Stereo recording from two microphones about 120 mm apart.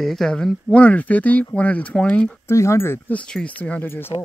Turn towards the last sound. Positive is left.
turn(degrees=20)  # may be behind; listen again after turning